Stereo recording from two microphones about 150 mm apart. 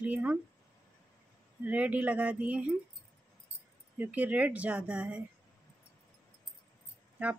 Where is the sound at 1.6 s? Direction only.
10° right (ahead or behind).